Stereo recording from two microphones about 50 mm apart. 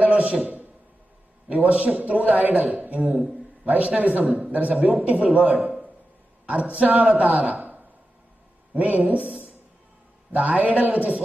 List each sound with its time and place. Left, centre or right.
0.0 s a man's voice: right
4.5 s a man's voice: right